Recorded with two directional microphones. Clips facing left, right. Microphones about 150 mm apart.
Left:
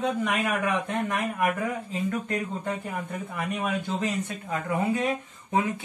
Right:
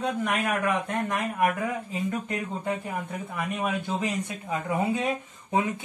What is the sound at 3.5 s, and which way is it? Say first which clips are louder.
Speech: even; 10° left (ahead or behind).